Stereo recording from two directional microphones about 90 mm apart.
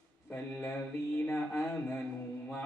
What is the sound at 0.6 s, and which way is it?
Mantra, 20° left (ahead or behind).